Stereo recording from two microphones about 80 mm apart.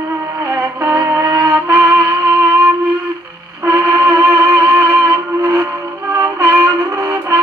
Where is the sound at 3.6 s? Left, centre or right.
Right.